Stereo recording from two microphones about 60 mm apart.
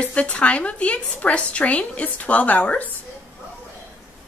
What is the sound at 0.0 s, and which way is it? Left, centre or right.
A woman's voice, left.